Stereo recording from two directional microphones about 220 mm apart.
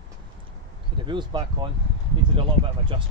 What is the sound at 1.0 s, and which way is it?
Speech, 20° right (ahead or behind).